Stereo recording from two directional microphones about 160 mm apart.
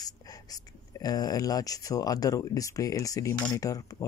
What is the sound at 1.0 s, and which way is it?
Speech, 25° left (ahead or behind).